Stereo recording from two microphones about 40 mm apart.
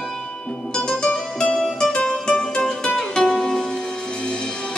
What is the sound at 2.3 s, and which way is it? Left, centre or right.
Music, centre.